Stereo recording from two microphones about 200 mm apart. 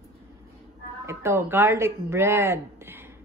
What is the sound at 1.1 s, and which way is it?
A woman's voice, 10° right (ahead or behind).